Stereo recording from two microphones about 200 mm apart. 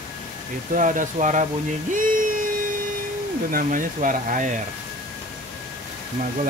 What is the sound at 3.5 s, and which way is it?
Speech, 45° right (ahead or behind).